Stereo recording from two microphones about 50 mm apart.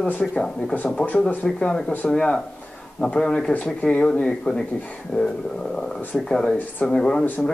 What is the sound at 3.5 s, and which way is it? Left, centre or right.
Speech, left.